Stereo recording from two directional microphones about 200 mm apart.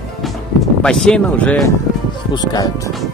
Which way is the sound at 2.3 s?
20° left (ahead or behind).